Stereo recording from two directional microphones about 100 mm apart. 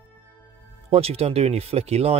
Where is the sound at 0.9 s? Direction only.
85° right.